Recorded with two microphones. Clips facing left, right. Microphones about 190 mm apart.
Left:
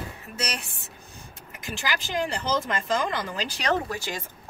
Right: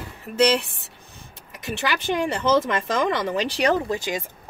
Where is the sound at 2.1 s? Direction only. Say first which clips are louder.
Right 5 dB; 55° right (ahead or behind).